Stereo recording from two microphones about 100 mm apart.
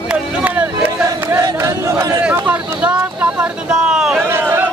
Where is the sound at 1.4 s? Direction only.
30° right (ahead or behind).